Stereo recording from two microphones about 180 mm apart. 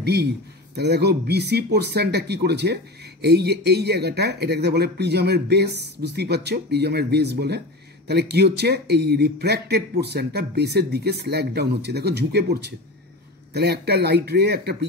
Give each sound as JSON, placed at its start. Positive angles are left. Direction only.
{"t": 0.0, "sound": "speech", "side_deg": -65}